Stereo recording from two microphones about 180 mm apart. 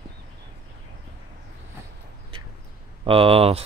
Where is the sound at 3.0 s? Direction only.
30° right (ahead or behind).